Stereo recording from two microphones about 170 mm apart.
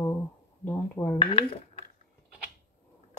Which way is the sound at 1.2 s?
30° left (ahead or behind).